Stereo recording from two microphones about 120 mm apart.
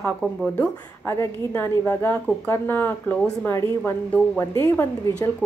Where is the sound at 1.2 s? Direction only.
25° left (ahead or behind).